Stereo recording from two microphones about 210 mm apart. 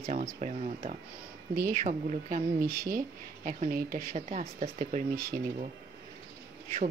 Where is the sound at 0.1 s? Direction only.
35° right (ahead or behind).